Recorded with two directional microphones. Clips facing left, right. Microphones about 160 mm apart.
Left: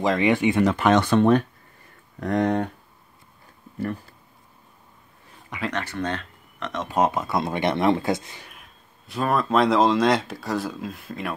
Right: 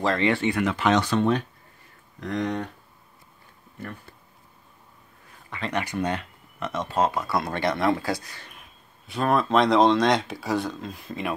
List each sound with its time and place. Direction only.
0.0 s speech: 15° left (ahead or behind)
0.7 s speech: 50° left (ahead or behind)
5.7 s speech: 10° right (ahead or behind)
6.9 s speech: 20° left (ahead or behind)
8.5 s speech: centre (ahead or behind)